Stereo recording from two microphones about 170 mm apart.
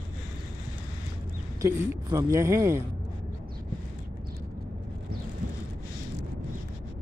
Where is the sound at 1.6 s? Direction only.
20° right (ahead or behind).